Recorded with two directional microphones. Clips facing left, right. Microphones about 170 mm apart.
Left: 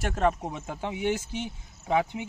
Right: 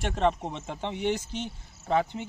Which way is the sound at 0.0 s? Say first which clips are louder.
Even; 5° left (ahead or behind).